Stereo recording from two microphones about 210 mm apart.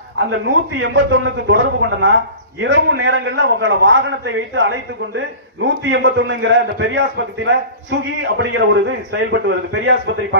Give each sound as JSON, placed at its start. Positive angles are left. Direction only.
{"t": 0.3, "sound": "a man's voice", "side_deg": -60}